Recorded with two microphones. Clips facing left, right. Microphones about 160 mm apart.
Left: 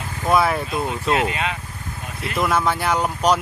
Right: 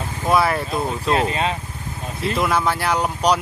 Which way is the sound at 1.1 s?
35° right (ahead or behind).